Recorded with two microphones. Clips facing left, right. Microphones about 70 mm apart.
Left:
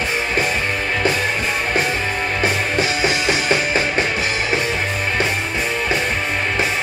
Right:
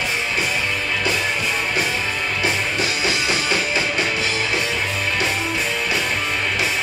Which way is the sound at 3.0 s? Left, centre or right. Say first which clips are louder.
Left 3 dB; left.